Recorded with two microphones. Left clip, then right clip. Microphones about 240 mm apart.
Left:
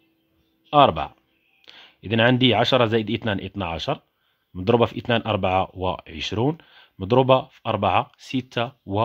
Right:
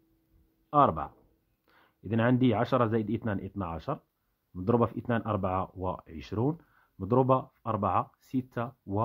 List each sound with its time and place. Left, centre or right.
0.7 s speech: left